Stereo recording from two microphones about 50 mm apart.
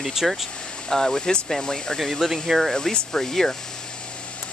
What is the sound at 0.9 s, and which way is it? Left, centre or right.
Speech, centre.